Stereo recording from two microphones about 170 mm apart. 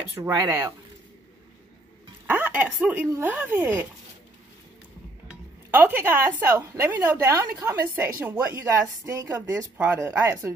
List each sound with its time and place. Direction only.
0.2 s speech: 15° right (ahead or behind)
2.2 s speech: 10° right (ahead or behind)
5.3 s music: 10° right (ahead or behind)
6.4 s speech: 15° right (ahead or behind)